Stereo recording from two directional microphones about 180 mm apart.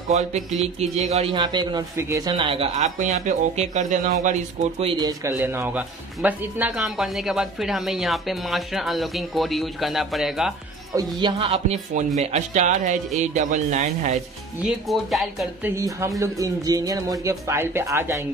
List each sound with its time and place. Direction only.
0.3 s speech: 35° right (ahead or behind)
1.3 s speech: 25° right (ahead or behind); by 10.5 s centre (ahead or behind)
11.0 s speech: 25° right (ahead or behind); by 14.2 s 40° right (ahead or behind)
14.6 s speech: centre (ahead or behind)
15.7 s speech: 15° right (ahead or behind)